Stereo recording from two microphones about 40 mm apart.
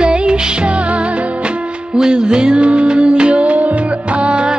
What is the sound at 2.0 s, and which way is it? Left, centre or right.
Music, centre.